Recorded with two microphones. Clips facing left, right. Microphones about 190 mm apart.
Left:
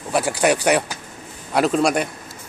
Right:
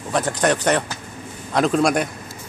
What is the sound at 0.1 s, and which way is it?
Speech, 10° left (ahead or behind).